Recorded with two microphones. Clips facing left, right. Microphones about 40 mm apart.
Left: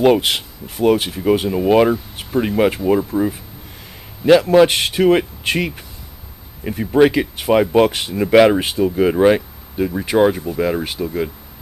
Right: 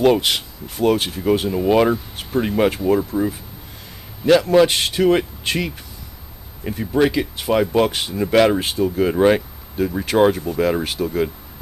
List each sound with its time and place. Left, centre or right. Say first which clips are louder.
0.0 s speech: left 2 dB; centre